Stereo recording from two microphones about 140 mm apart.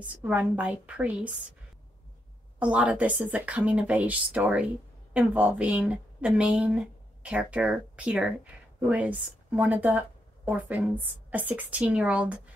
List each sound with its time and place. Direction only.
0.0 s speech: 10° right (ahead or behind)
2.6 s speech: 10° right (ahead or behind)